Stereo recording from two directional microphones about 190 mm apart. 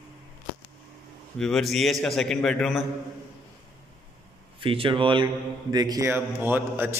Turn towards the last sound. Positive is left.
turn(degrees=-10)  # may be behind; listen again after turning